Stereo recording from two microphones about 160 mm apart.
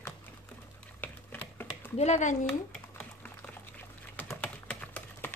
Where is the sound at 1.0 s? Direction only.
10° left (ahead or behind).